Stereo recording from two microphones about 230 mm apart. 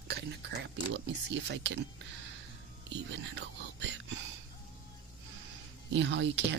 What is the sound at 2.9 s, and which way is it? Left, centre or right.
Speech, right.